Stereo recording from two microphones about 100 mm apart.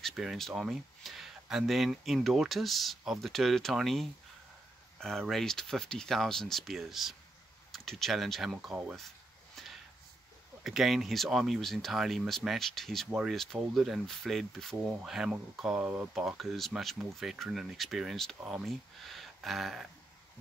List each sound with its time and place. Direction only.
0.0 s speech: 5° right (ahead or behind)
9.6 s a sound: centre (ahead or behind)
10.6 s speech: centre (ahead or behind)
14.9 s speech: 10° right (ahead or behind)
16.2 s speech: 5° right (ahead or behind)